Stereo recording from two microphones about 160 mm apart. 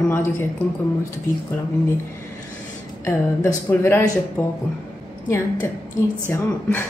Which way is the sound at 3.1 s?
15° left (ahead or behind).